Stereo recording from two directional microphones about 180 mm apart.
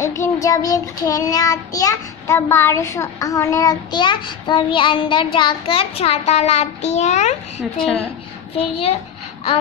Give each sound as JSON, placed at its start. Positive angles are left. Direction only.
{"t": 0.0, "sound": "child singing", "side_deg": 15}
{"t": 7.7, "sound": "a woman's voice", "side_deg": 5}
{"t": 8.5, "sound": "a child's voice", "side_deg": 30}